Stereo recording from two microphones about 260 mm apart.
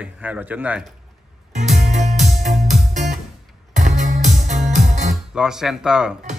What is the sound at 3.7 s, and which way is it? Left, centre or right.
Music, right.